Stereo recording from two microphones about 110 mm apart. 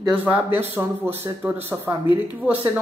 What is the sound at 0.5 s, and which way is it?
Speech, 20° right (ahead or behind).